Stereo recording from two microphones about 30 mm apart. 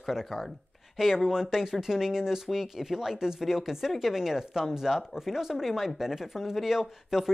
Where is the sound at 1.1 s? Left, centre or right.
Centre.